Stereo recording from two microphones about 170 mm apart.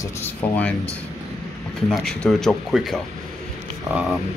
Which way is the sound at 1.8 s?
Centre (ahead or behind).